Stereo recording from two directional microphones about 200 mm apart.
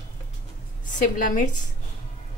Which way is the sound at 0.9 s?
40° left (ahead or behind).